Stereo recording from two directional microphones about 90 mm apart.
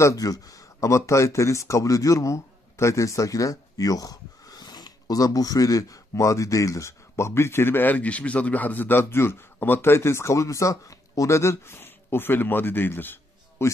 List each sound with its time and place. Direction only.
0.0 s speech: 40° left (ahead or behind)